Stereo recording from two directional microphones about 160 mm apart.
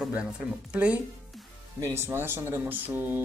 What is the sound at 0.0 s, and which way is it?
Speech, 5° right (ahead or behind).